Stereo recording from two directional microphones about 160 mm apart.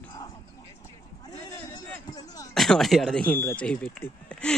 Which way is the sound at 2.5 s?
Centre (ahead or behind).